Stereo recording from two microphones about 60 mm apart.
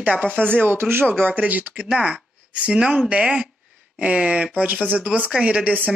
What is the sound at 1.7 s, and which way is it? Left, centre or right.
Speech, centre.